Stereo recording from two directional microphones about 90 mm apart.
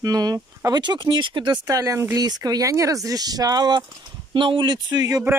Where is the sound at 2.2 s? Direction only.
45° right (ahead or behind).